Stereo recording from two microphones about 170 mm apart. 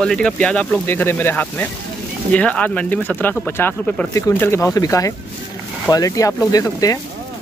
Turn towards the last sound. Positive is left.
turn(degrees=20)  # may be behind; listen again after turning